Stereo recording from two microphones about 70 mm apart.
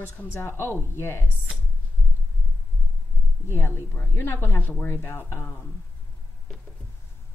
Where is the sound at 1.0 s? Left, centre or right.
Left.